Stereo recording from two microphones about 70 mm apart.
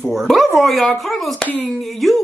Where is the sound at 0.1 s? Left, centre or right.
Centre.